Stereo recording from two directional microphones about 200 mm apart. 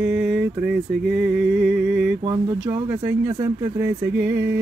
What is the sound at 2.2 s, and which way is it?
Speech, 20° right (ahead or behind).